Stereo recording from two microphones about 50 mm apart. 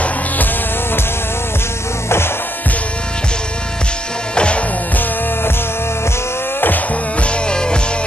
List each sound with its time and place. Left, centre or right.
2.0 s music: left
4.4 s music: left
7.2 s music: centre